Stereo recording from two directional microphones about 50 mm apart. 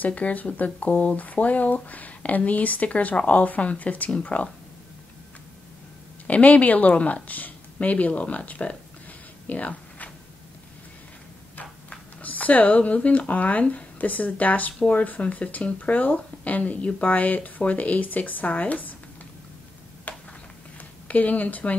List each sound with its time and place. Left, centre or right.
0.0 s speech: left
6.2 s speech: left
9.5 s a sound: left
12.2 s speech: left
20.1 s a sound: left
21.1 s speech: left